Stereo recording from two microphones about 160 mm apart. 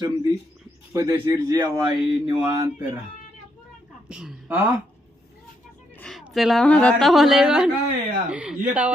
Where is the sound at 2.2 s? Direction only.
15° right (ahead or behind).